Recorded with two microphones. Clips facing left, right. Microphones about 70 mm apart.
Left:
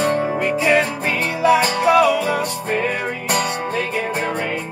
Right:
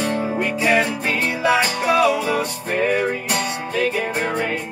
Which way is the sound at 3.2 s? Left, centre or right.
Left.